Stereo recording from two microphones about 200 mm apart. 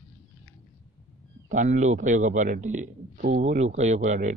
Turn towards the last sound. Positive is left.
turn(degrees=-40)  # may be behind; listen again after turning